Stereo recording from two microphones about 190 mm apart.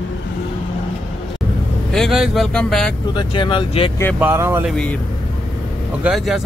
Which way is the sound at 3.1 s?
25° left (ahead or behind).